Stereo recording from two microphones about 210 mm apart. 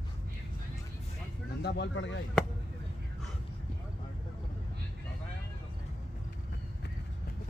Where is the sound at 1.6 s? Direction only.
55° left (ahead or behind).